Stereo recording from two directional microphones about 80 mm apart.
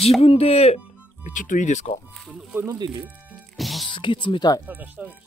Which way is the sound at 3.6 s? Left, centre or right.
Centre.